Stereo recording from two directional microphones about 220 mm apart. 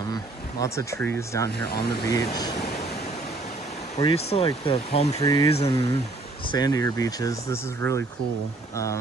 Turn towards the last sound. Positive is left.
turn(degrees=10)  # may be behind; listen again after turning